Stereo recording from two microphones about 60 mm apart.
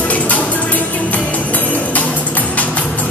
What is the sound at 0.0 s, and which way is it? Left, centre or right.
Music, left.